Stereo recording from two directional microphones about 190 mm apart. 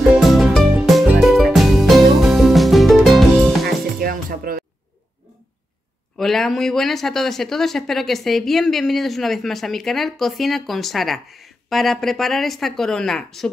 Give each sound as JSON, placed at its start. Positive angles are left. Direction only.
{"t": 0.1, "sound": "music", "side_deg": 0}
{"t": 3.6, "sound": "music", "side_deg": -50}
{"t": 6.1, "sound": "speech", "side_deg": 0}